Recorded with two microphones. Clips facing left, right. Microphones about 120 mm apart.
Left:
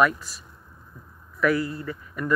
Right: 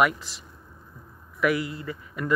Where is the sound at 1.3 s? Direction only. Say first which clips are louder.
Left 2 dB; 15° right (ahead or behind).